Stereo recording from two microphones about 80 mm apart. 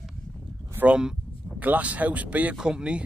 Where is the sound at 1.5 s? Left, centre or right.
Centre.